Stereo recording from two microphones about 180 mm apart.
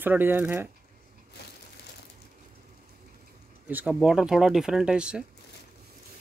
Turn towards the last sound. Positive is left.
turn(degrees=-5)  # may be behind; listen again after turning